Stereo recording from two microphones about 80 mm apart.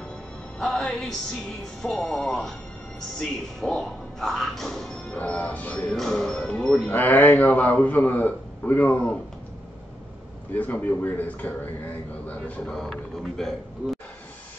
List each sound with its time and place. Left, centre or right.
0.6 s speech: centre
5.1 s speech: centre
5.9 s speech: centre
6.9 s a man's voice: left
10.5 s a man's voice: left
12.7 s speech: centre